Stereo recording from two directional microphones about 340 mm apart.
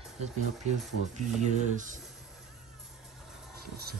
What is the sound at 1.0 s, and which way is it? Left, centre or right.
Speech, right.